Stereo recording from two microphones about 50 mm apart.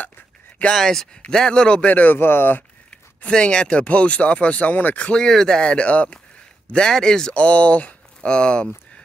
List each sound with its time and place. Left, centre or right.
0.7 s speech: centre
1.9 s speech: left
2.1 s speech: left
3.3 s speech: centre
5.1 s speech: centre
6.7 s speech: centre
7.3 s speech: left